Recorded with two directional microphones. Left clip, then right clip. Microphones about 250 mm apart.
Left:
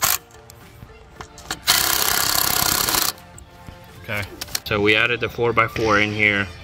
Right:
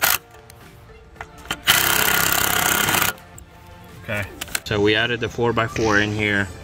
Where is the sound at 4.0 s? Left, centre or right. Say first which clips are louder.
Right 1 dB; right.